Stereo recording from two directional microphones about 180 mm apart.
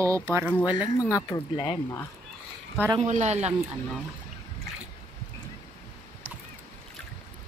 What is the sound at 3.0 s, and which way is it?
Speech, 40° right (ahead or behind).